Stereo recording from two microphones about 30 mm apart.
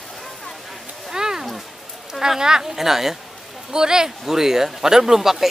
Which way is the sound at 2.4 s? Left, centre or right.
Right.